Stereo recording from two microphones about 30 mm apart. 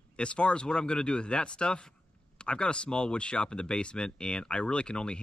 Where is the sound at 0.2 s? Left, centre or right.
Left.